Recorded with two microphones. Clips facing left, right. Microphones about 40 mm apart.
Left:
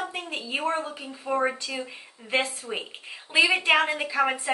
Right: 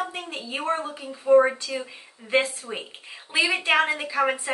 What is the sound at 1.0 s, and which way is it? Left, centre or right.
A woman's voice, centre.